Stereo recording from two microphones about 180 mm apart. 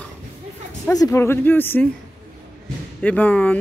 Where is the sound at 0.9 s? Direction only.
20° left (ahead or behind).